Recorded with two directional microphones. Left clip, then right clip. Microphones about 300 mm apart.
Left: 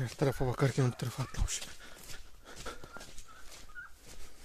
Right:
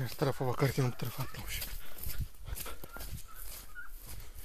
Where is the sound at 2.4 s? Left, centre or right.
Left.